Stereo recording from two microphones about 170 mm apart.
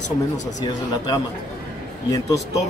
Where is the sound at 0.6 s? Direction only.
20° left (ahead or behind).